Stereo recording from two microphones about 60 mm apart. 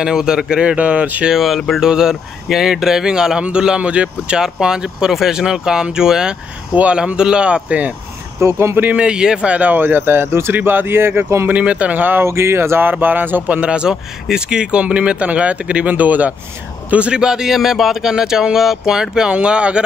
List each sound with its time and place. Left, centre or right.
0.0 s speech: centre
1.2 s speech: centre; by 7.9 s right
8.4 s speech: right
8.9 s speech: centre; by 11.2 s right
11.4 s speech: right
12.2 s speech: right
12.9 s speech: right
13.5 s speech: centre